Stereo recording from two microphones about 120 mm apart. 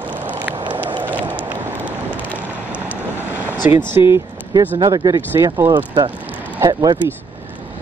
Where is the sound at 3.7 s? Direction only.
20° right (ahead or behind).